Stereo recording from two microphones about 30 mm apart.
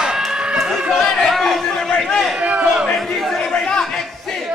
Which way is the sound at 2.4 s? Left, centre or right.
Right.